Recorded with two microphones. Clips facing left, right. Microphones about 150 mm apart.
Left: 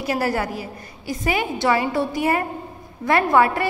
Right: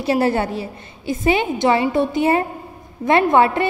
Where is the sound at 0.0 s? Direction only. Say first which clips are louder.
Right 5 dB; 25° right (ahead or behind).